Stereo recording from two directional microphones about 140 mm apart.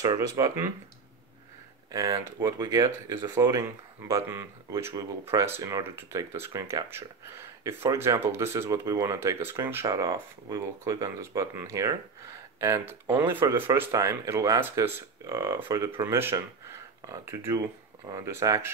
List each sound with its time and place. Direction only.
0.0 s speech: 25° right (ahead or behind)
1.9 s speech: 25° right (ahead or behind)